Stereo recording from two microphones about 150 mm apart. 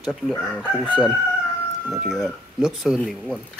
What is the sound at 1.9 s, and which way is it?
Speech, centre (ahead or behind).